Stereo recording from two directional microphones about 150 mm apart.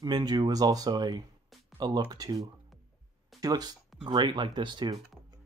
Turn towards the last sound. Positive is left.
turn(degrees=-30)  # may be behind; listen again after turning